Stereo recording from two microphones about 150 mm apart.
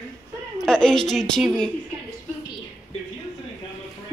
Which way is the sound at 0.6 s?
5° left (ahead or behind).